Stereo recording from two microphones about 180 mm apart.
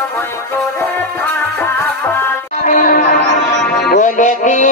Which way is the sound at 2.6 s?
45° left (ahead or behind).